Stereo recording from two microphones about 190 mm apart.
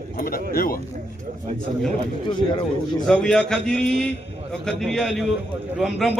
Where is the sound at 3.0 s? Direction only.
5° left (ahead or behind).